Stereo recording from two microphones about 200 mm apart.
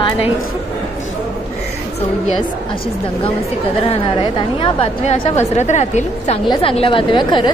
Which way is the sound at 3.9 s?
25° left (ahead or behind).